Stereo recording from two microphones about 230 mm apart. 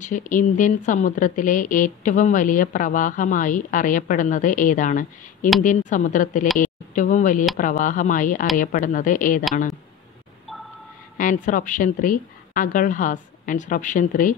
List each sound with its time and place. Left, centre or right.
0.0 s a woman's voice: left
10.5 s a sound: centre
11.1 s a woman's voice: left